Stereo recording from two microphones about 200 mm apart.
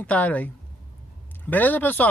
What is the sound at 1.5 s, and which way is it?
Speech, 10° left (ahead or behind).